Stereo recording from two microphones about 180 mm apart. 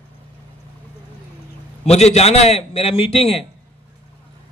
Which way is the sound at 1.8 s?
35° left (ahead or behind).